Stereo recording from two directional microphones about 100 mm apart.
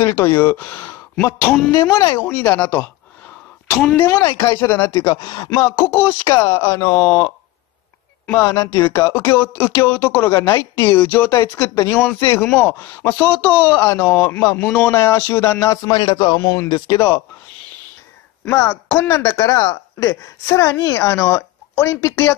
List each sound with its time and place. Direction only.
0.0 s speech: 25° left (ahead or behind)
2.0 s speech: 40° left (ahead or behind)
2.2 s speech: 15° left (ahead or behind)
4.0 s speech: 25° left (ahead or behind)
5.0 s speech: 35° left (ahead or behind)
8.3 s speech: 35° left (ahead or behind)
15.9 s a man's voice: 45° left (ahead or behind)
18.4 s speech: 25° left (ahead or behind)